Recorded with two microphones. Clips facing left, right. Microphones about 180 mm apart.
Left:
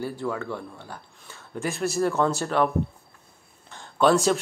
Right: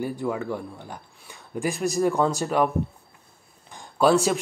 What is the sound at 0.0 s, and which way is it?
Speech, 15° right (ahead or behind).